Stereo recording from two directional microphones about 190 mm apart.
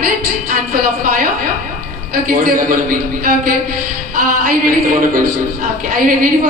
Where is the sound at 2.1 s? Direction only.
45° right (ahead or behind).